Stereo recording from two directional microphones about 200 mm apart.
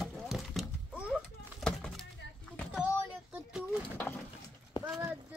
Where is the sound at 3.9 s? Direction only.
10° left (ahead or behind).